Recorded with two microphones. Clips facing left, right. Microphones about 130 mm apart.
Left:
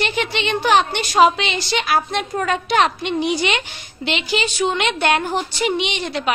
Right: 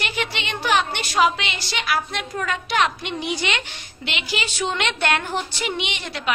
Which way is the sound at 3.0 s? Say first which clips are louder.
Left 6 dB; 25° left (ahead or behind).